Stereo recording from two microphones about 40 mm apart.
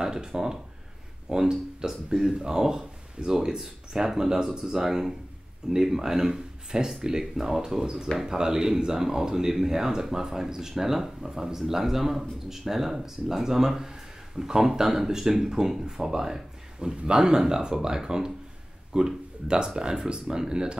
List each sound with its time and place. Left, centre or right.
0.0 s speech: centre